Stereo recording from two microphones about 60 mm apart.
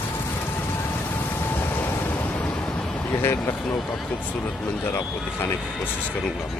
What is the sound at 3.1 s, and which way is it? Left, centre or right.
Speech, left.